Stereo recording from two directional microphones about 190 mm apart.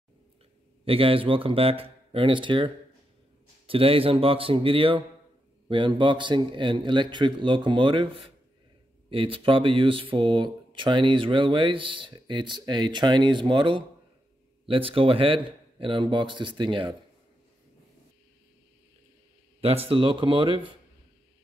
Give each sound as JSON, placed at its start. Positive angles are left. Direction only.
{"t": 0.8, "sound": "speech", "side_deg": -30}
{"t": 19.6, "sound": "speech", "side_deg": -30}